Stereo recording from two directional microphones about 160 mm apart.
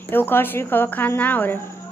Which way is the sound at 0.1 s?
15° left (ahead or behind).